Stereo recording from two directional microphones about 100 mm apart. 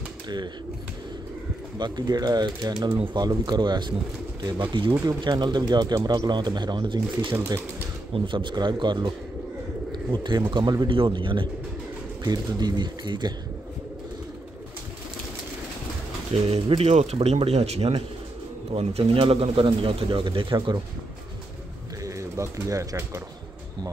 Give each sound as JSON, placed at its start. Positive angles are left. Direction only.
{"t": 1.8, "sound": "speech", "side_deg": -45}
{"t": 10.9, "sound": "speech", "side_deg": -55}
{"t": 16.3, "sound": "speech", "side_deg": -90}
{"t": 20.5, "sound": "speech", "side_deg": -45}
{"t": 22.0, "sound": "bird", "side_deg": -30}